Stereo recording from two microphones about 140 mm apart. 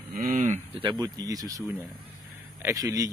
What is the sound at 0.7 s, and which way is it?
Speech, 35° right (ahead or behind).